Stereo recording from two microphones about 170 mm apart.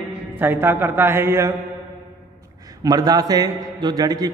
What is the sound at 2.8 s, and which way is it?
A man's voice, 20° right (ahead or behind).